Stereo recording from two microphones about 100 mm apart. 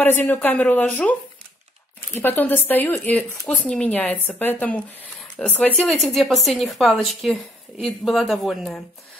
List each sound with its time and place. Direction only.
0.0 s speech: 20° left (ahead or behind)
2.1 s speech: 20° left (ahead or behind)
5.8 s speech: centre (ahead or behind)